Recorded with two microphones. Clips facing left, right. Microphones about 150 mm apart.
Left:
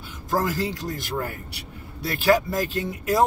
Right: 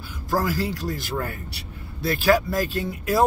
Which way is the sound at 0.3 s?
20° left (ahead or behind).